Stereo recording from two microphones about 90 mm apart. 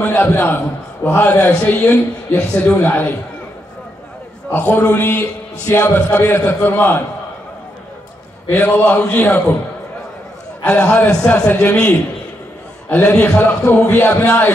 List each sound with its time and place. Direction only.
0.0 s a man's voice: 20° left (ahead or behind)
4.5 s a man's voice: 20° left (ahead or behind)
8.5 s a man's voice: 20° left (ahead or behind)
10.6 s a man's voice: 15° left (ahead or behind)